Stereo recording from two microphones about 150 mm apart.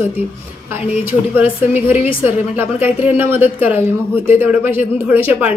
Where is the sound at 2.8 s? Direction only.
15° right (ahead or behind).